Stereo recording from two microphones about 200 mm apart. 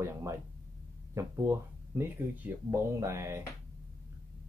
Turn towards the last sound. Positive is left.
turn(degrees=-15)  # may be behind; listen again after turning